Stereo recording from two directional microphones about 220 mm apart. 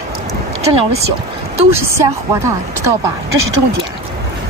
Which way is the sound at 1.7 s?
10° right (ahead or behind).